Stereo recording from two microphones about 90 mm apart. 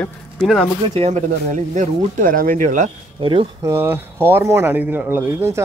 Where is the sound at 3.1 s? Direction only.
75° right (ahead or behind).